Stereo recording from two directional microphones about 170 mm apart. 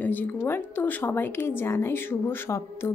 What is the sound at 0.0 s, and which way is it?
Speech, 10° left (ahead or behind).